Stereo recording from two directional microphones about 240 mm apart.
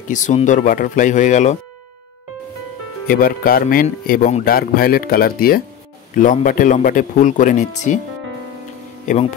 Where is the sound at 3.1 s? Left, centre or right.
Left.